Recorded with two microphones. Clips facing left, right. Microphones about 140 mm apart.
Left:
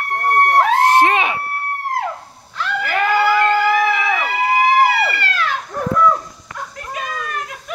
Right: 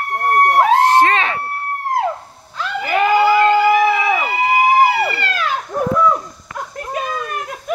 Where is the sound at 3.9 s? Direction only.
20° right (ahead or behind).